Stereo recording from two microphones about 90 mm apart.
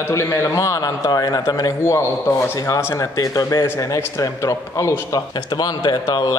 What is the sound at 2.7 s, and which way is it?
Speech, 35° left (ahead or behind).